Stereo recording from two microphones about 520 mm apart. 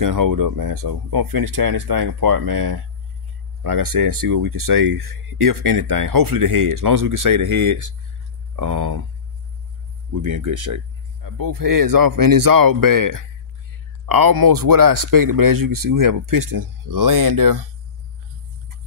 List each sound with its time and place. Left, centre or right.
0.0 s speech: right
10.3 s speech: right